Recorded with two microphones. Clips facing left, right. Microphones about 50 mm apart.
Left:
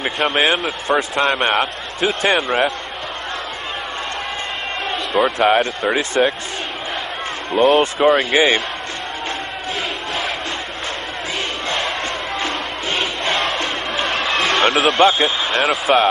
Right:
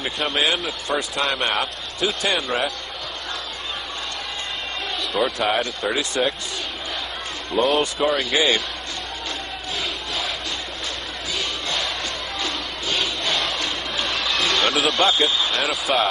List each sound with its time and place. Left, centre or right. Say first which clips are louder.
0.0 s a man's voice: left 5 dB; left
4.9 s a man's voice: left 5 dB; left
7.5 s a man's voice: left 6 dB; left
12.4 s crowd: left 5 dB; left